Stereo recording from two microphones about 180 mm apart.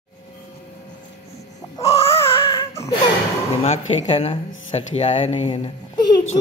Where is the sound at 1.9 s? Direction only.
35° left (ahead or behind).